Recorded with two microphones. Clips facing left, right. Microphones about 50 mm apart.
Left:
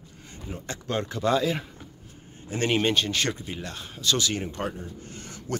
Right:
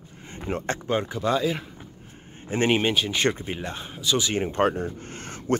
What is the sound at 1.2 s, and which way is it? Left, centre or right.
Speech, centre.